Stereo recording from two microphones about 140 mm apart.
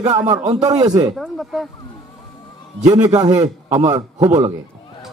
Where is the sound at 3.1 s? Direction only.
25° right (ahead or behind).